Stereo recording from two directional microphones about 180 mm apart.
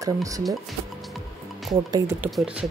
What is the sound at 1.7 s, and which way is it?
Speech, 20° right (ahead or behind).